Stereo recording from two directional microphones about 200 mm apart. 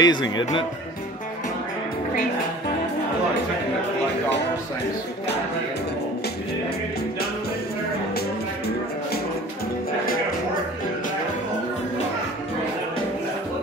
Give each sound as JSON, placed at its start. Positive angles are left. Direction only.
{"t": 0.0, "sound": "speech", "side_deg": 20}